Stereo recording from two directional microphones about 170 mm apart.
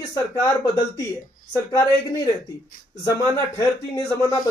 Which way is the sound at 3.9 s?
20° left (ahead or behind).